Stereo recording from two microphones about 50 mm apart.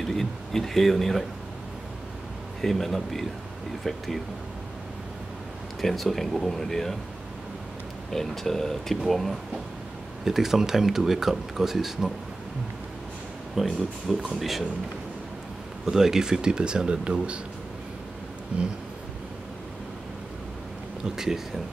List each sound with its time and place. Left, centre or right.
0.0 s speech: centre
2.6 s speech: centre
5.8 s speech: centre
8.1 s speech: centre
10.2 s speech: centre
13.6 s speech: centre
15.9 s speech: centre
18.5 s a sound: right
21.0 s speech: centre